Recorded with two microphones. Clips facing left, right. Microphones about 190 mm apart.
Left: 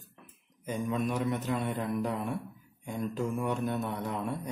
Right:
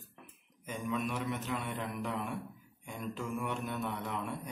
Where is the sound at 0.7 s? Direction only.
40° left (ahead or behind).